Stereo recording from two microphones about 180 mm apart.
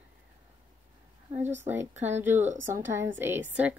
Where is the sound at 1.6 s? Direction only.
10° right (ahead or behind).